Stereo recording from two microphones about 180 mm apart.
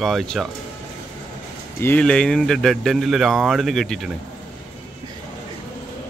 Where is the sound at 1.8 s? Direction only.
5° left (ahead or behind).